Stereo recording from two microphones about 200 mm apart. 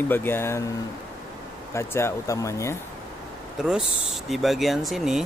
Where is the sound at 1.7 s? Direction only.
15° left (ahead or behind).